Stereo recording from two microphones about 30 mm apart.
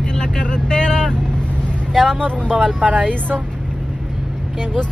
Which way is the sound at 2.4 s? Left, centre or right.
Right.